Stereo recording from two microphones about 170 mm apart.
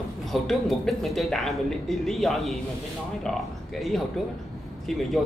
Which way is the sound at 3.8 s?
Centre (ahead or behind).